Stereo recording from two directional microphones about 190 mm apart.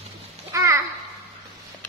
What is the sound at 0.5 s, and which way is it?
Babbling, 15° right (ahead or behind).